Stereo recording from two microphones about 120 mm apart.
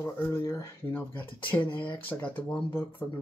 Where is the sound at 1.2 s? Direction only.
15° left (ahead or behind).